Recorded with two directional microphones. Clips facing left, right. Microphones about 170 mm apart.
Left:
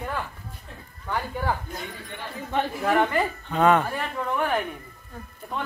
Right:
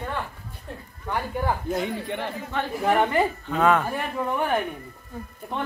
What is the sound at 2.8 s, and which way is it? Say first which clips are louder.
Speech: right 3 dB; 20° right (ahead or behind).